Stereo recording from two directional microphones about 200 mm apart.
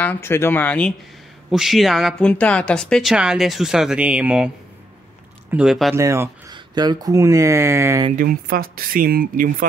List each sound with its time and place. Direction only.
0.0 s speech: 10° left (ahead or behind); by 4.5 s 5° right (ahead or behind)
5.5 s speech: 5° right (ahead or behind)
5.9 s speech: 15° right (ahead or behind)
8.2 s speech: 45° right (ahead or behind)